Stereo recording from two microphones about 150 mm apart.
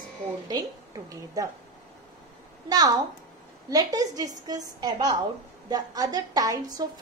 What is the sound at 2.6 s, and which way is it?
A woman's voice, 25° right (ahead or behind).